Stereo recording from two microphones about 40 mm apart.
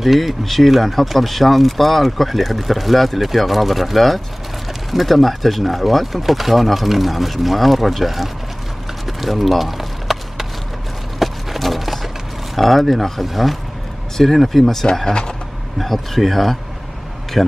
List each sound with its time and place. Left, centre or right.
0.0 s speech: centre
9.0 s a sound: centre
12.5 s speech: centre